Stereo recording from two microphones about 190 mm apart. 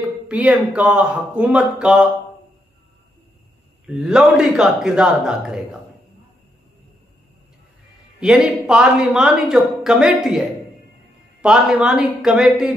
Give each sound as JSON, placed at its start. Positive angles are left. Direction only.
{"t": 0.3, "sound": "a woman's voice", "side_deg": -5}
{"t": 3.8, "sound": "a woman's voice", "side_deg": 0}
{"t": 8.2, "sound": "a woman's voice", "side_deg": -5}
{"t": 11.4, "sound": "a woman's voice", "side_deg": -5}